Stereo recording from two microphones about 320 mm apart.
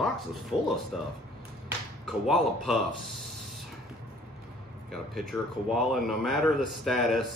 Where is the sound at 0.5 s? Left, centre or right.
Centre.